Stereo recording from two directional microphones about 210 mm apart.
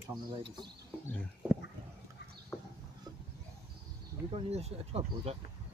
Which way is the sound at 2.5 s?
5° left (ahead or behind).